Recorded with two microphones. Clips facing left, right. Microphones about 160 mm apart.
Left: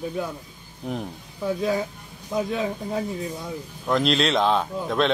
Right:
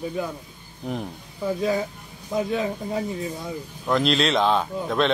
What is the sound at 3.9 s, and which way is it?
Speech, centre (ahead or behind).